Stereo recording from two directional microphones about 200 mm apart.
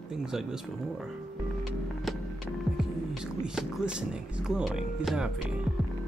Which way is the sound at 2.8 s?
5° right (ahead or behind).